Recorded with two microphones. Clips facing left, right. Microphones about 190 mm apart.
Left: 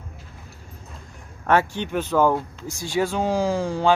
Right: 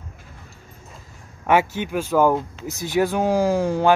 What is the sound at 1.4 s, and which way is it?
Speech, 10° right (ahead or behind).